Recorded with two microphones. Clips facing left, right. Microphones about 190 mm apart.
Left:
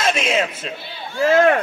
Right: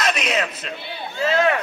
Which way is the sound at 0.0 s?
30° left (ahead or behind).